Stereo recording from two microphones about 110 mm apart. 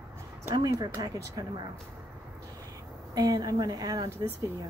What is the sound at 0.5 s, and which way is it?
Speech, 35° right (ahead or behind).